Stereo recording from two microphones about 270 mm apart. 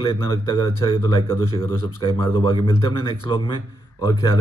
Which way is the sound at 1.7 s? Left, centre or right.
Right.